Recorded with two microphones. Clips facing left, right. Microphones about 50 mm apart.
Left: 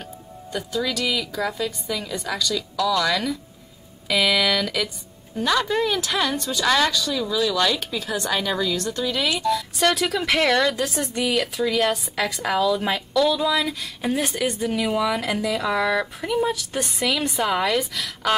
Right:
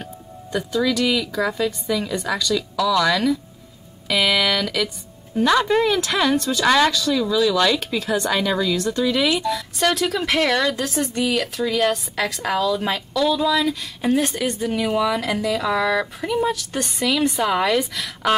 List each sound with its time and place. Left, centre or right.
0.0 s speech: centre
5.5 s speech: centre